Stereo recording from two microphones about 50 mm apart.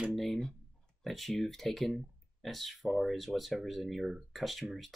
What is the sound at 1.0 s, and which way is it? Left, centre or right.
Speech, centre.